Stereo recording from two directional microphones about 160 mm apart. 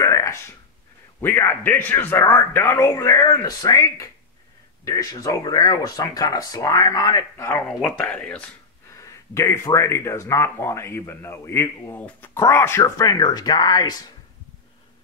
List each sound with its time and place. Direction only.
0.0 s a sound: 20° left (ahead or behind)
1.2 s speech: 15° left (ahead or behind)
9.0 s speech: 20° left (ahead or behind)